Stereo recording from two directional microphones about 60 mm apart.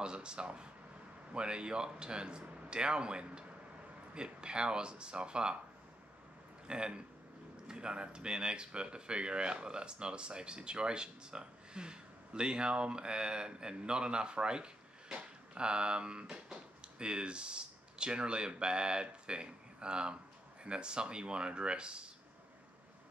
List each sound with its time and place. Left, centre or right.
0.0 s speech: centre
6.7 s speech: centre